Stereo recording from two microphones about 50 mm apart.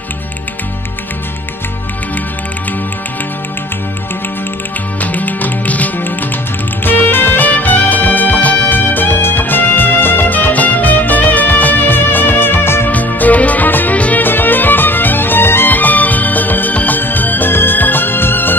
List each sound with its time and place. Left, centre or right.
5.0 s music: left
12.9 s music: left
13.9 s music: left
14.2 s music: left
15.7 s music: left